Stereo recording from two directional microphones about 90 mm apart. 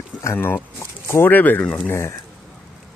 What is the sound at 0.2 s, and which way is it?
Speech, 30° left (ahead or behind).